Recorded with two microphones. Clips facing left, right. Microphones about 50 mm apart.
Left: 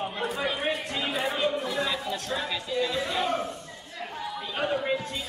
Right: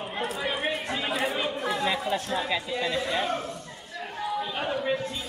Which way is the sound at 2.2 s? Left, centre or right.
Centre.